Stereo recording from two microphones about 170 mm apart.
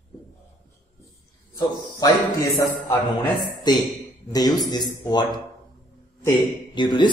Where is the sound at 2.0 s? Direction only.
20° left (ahead or behind).